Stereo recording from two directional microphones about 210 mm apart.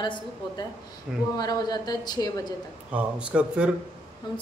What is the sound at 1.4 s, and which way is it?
A woman's voice, 20° left (ahead or behind).